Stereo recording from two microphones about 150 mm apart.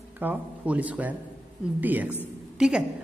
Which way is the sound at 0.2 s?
10° right (ahead or behind).